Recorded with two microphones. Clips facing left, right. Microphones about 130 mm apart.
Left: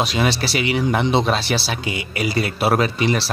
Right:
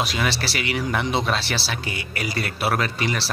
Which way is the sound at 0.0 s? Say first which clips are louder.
Left 5 dB; 20° left (ahead or behind).